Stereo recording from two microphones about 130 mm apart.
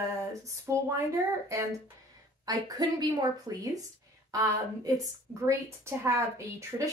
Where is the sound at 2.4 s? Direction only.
30° right (ahead or behind).